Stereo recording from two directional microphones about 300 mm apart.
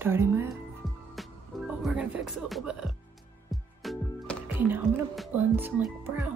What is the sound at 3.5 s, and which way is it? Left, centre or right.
Music, centre.